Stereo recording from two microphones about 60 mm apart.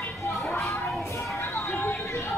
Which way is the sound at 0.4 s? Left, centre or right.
Centre.